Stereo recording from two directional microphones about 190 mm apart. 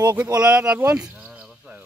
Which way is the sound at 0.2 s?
5° right (ahead or behind).